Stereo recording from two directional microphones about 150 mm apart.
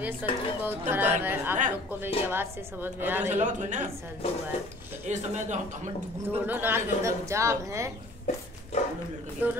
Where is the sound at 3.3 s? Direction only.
55° right (ahead or behind).